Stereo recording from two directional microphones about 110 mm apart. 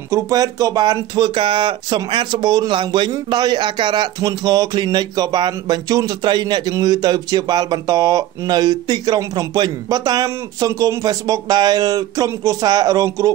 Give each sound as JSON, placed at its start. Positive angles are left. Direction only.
{"t": 0.1, "sound": "speech", "side_deg": -35}
{"t": 4.2, "sound": "speech", "side_deg": -35}